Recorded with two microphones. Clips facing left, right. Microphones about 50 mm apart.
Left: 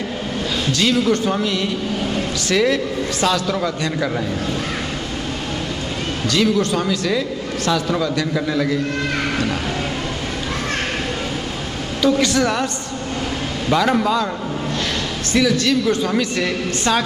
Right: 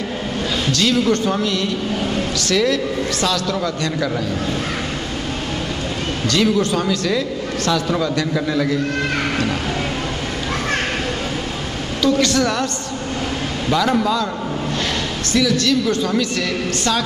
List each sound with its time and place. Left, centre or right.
0.7 s a man's voice: centre
6.2 s a man's voice: centre
12.0 s a man's voice: centre
13.7 s a man's voice: centre
15.3 s a man's voice: centre
16.3 s a man's voice: left